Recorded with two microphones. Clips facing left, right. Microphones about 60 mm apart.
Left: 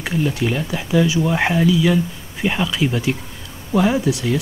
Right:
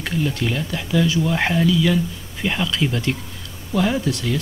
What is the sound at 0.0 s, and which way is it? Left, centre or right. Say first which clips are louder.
Speech: left 2 dB; centre.